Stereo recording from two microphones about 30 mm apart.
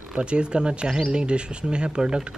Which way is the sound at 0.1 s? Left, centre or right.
Right.